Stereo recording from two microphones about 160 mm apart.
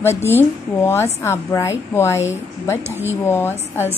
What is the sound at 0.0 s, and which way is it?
A woman's voice, 15° left (ahead or behind).